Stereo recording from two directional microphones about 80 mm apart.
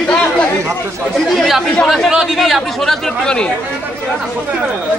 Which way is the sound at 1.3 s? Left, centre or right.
Centre.